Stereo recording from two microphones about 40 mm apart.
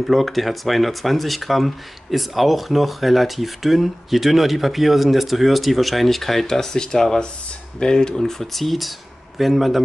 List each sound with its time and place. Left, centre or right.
0.0 s speech: centre
8.2 s speech: centre